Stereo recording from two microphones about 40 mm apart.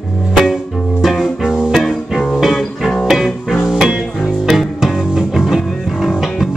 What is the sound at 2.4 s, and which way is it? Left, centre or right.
Music, centre.